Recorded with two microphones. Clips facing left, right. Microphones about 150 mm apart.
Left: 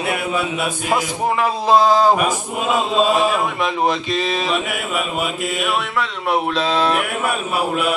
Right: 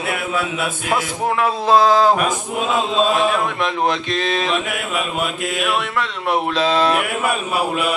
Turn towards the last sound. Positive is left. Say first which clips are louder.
# right 1 dB
turn(degrees=0)  # may be behind; listen again after turning